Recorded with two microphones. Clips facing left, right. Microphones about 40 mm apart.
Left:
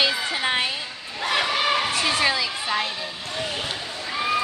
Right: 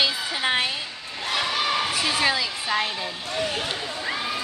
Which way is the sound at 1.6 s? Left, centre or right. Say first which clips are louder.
Left 2 dB; left.